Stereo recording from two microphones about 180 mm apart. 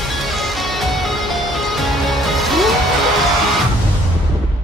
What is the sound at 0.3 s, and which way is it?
Music, centre (ahead or behind).